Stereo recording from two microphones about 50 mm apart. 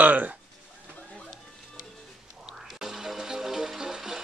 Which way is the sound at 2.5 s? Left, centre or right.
Centre.